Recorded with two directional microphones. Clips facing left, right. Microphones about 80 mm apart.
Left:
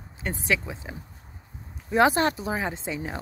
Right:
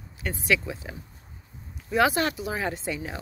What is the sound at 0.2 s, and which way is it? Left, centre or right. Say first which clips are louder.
Speech: right 1 dB; left.